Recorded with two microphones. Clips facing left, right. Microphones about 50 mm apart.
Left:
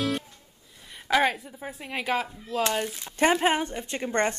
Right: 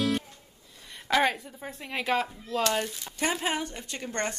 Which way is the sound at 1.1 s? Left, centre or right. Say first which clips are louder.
Left 2 dB; centre.